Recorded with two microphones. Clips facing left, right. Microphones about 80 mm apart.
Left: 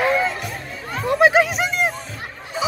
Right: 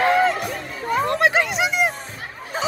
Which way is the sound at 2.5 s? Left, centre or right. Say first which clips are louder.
Even; right.